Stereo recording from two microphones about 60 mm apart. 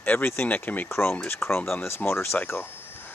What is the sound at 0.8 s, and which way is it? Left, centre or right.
Speech, left.